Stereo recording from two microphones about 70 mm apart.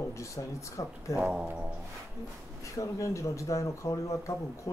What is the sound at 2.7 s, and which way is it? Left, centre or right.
Speech, left.